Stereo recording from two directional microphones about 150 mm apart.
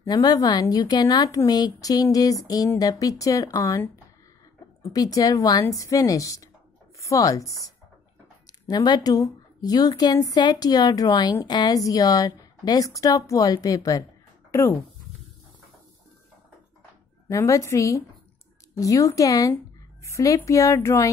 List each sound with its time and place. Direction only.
0.0 s a woman's voice: 25° left (ahead or behind)
4.9 s a woman's voice: 25° left (ahead or behind)
17.3 s a woman's voice: 20° left (ahead or behind)